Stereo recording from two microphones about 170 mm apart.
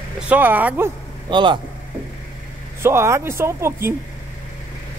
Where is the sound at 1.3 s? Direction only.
30° right (ahead or behind).